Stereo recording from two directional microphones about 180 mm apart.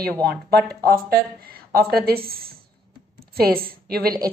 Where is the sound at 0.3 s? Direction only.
60° right (ahead or behind).